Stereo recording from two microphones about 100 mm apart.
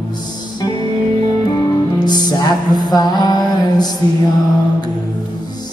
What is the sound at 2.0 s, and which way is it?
Music, 45° left (ahead or behind).